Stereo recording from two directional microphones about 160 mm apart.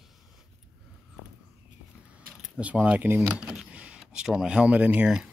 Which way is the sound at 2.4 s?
5° right (ahead or behind).